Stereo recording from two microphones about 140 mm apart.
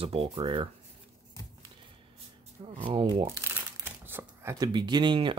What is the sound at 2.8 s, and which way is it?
Speech, 40° right (ahead or behind).